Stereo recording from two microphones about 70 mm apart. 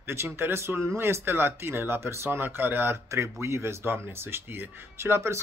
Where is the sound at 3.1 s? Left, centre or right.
Right.